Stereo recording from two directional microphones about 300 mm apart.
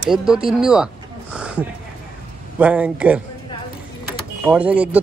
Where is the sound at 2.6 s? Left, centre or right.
Centre.